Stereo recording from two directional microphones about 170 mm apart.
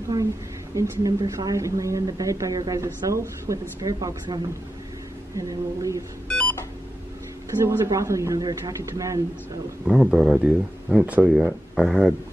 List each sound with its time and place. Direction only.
0.7 s a woman's voice: 20° right (ahead or behind)
6.2 s telephone dialing: 5° left (ahead or behind)
7.6 s a woman's voice: 15° right (ahead or behind)
9.8 s speech: 5° right (ahead or behind)